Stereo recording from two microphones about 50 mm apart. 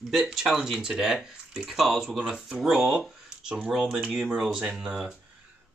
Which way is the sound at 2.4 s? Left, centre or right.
Right.